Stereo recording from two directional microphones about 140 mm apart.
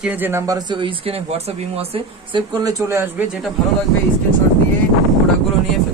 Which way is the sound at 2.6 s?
20° right (ahead or behind).